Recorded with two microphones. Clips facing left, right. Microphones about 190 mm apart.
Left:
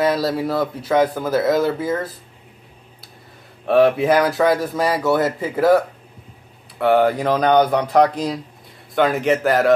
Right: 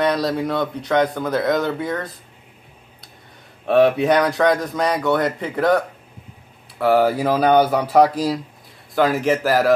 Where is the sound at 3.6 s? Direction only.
Centre (ahead or behind).